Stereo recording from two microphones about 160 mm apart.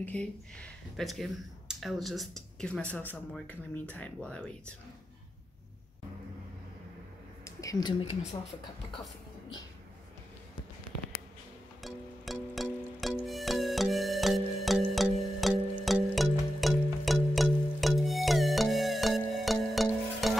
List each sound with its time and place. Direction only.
0.0 s speech: 5° left (ahead or behind)
7.4 s a sound: 20° left (ahead or behind)
11.8 s music: centre (ahead or behind)